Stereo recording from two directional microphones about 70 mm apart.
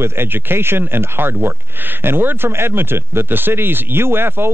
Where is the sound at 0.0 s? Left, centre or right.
Right.